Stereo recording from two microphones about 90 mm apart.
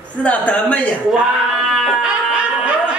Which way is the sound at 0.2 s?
15° left (ahead or behind).